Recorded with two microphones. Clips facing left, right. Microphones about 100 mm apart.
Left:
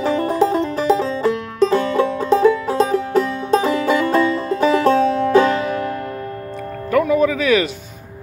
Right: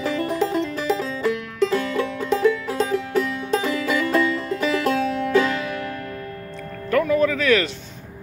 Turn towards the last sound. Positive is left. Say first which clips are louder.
# left 3 dB
turn(degrees=10)  # may be behind; listen again after turning